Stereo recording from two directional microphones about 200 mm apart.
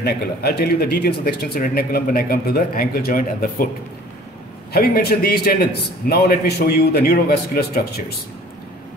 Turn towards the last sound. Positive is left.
turn(degrees=50)  # may be behind; listen again after turning